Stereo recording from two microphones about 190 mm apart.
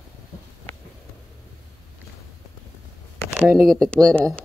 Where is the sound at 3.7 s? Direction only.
Centre (ahead or behind).